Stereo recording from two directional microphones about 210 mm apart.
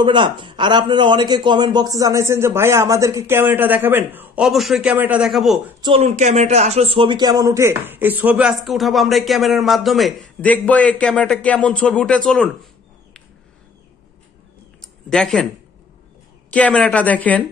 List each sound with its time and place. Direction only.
0.0 s a man's voice: 20° right (ahead or behind); by 5.6 s centre (ahead or behind)
5.8 s speech: 25° right (ahead or behind); by 12.5 s 5° left (ahead or behind)
14.8 s a sound: centre (ahead or behind)
16.4 s a woman's voice: 5° left (ahead or behind)